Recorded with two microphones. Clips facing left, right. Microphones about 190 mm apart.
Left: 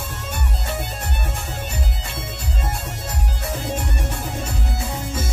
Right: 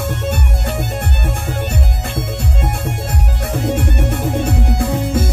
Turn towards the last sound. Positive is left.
turn(degrees=-60)  # may be behind; listen again after turning